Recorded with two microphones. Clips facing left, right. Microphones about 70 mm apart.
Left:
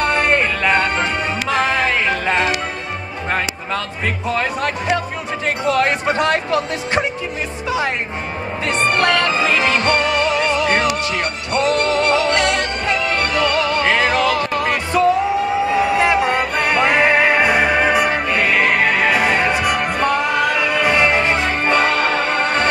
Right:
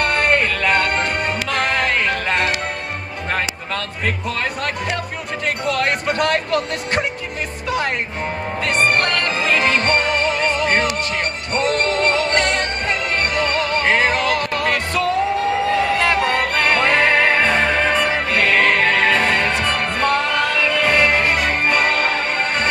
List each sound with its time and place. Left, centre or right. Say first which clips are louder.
0.0 s music: left 1 dB; right
0.4 s music: left 1 dB; left
0.7 s music: left 1 dB; right
3.3 s speech: left 2 dB; left
6.1 s speech: left 1 dB; right
8.6 s music: left 2 dB; right
14.6 s music: left 3 dB; left
15.7 s a sound: left 4 dB; centre
16.7 s music: left 2 dB; centre; by 22.7 s left